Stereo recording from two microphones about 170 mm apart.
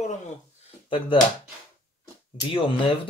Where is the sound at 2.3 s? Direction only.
30° left (ahead or behind).